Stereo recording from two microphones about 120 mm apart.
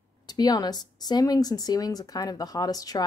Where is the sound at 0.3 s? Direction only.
35° left (ahead or behind).